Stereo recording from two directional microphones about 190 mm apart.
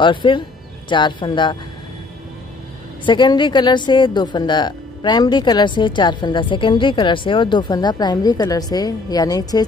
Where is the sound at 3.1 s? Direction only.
25° left (ahead or behind).